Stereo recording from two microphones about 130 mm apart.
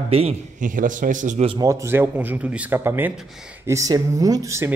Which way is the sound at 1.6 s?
20° right (ahead or behind).